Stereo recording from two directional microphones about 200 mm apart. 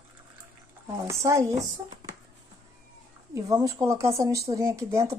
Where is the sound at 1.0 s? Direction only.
15° right (ahead or behind).